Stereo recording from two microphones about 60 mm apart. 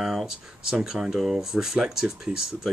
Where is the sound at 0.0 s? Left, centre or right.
Centre.